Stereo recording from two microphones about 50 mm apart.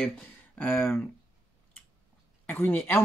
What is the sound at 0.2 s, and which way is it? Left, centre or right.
Speech, left.